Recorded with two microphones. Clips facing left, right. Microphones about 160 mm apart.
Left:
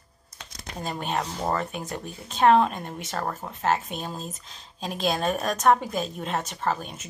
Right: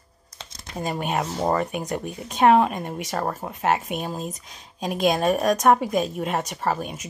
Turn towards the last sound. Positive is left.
turn(degrees=-5)  # may be behind; listen again after turning